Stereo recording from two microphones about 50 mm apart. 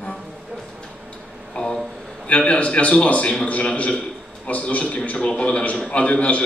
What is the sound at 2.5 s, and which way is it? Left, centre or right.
A man's voice, left.